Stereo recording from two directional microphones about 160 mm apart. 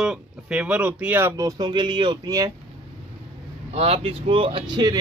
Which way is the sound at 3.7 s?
40° right (ahead or behind).